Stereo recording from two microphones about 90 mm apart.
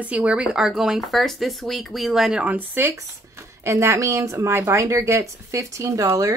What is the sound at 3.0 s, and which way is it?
Speech, 30° right (ahead or behind).